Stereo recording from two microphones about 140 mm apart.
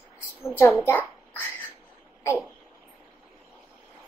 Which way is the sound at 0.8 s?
15° left (ahead or behind).